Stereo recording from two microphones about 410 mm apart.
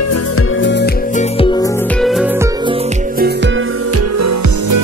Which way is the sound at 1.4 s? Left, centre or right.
Centre.